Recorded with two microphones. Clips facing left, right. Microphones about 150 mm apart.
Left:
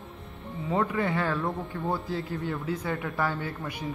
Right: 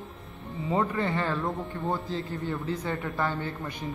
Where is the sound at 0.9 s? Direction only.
10° left (ahead or behind).